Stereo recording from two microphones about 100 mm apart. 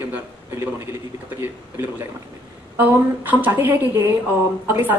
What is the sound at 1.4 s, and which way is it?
Speech, 25° right (ahead or behind).